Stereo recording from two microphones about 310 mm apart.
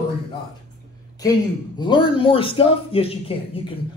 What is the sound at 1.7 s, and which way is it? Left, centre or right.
A man's voice, centre.